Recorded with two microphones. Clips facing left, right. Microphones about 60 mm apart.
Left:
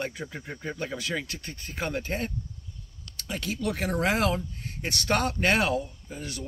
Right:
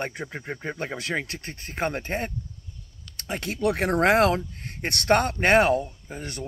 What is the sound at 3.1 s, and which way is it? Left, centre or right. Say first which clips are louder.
Speech: right 2 dB; right.